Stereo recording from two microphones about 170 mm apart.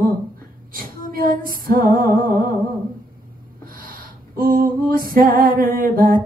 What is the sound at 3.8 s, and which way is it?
Female singing, 55° right (ahead or behind).